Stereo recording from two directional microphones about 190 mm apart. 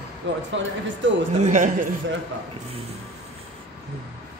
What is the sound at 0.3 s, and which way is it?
Speech, 70° right (ahead or behind).